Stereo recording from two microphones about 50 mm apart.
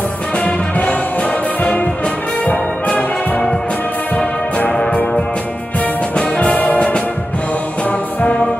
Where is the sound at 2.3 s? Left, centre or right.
Left.